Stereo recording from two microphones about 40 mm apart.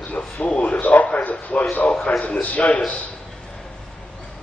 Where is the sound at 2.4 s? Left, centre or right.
Left.